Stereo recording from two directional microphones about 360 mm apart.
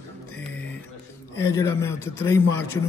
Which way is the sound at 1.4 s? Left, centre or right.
Centre.